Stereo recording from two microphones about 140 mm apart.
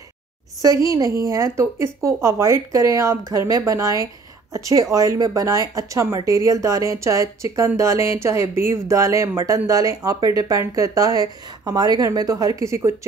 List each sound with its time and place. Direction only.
0.8 s speech: 25° right (ahead or behind)